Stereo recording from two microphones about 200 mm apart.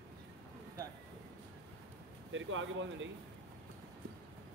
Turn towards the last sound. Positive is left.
turn(degrees=-70)  # may be behind; listen again after turning